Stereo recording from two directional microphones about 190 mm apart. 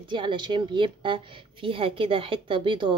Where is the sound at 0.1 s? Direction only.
25° right (ahead or behind).